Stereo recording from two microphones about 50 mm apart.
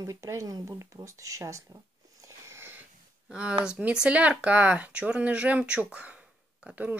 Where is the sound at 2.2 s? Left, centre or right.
Right.